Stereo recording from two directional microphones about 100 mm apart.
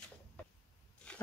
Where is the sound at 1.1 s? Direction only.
10° left (ahead or behind).